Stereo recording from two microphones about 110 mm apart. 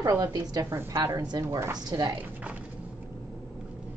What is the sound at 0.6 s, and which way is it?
A woman's voice, 25° right (ahead or behind).